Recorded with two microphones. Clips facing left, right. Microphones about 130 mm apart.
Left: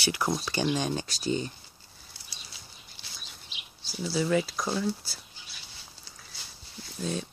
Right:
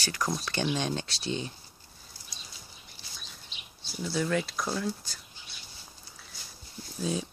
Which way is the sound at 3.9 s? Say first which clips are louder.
Left 3 dB; 5° left (ahead or behind).